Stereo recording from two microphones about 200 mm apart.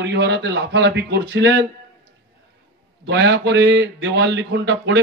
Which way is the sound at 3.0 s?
60° right (ahead or behind).